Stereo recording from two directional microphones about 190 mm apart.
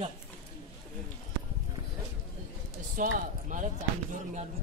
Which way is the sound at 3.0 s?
45° right (ahead or behind).